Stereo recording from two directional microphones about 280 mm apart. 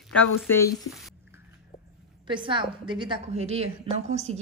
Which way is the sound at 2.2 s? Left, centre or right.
Centre.